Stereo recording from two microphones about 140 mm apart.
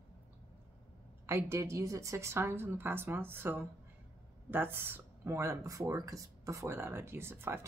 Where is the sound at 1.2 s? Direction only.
20° right (ahead or behind).